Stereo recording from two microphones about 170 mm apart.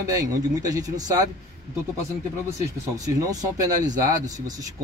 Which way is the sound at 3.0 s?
20° right (ahead or behind).